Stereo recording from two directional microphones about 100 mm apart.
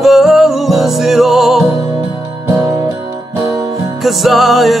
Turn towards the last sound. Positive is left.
turn(degrees=0)  # may be behind; listen again after turning